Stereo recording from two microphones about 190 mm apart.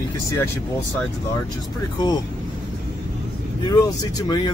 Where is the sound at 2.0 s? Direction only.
20° left (ahead or behind).